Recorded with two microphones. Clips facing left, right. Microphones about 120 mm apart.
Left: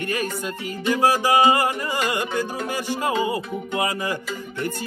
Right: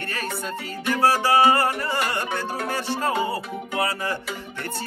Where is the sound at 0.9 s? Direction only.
15° left (ahead or behind).